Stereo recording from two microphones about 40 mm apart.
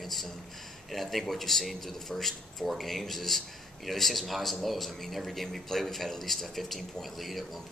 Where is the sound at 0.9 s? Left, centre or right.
Centre.